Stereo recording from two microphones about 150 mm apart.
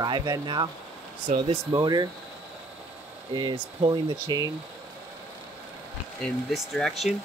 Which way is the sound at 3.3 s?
30° right (ahead or behind).